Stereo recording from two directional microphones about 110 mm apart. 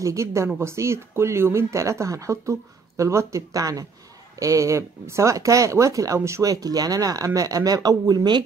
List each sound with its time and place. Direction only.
0.0 s speech: 25° right (ahead or behind)